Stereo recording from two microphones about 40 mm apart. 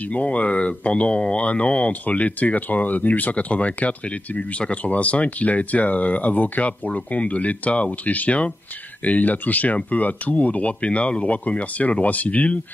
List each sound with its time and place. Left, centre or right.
0.1 s speech: left